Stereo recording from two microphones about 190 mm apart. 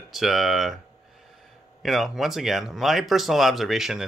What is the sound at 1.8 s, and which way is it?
Speech, centre (ahead or behind).